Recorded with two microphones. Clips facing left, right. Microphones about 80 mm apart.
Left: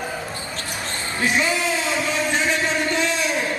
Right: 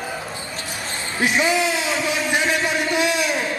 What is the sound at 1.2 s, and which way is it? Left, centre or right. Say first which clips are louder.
Basketball bounce: right 2 dB; centre.